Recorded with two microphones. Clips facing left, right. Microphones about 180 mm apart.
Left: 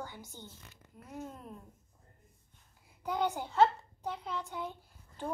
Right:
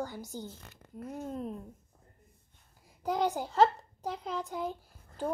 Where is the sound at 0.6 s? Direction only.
50° right (ahead or behind).